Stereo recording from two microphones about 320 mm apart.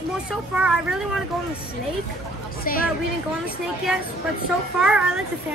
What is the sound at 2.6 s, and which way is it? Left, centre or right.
Speech, left.